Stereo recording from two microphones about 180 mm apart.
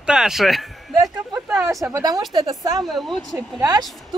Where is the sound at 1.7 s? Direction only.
15° right (ahead or behind).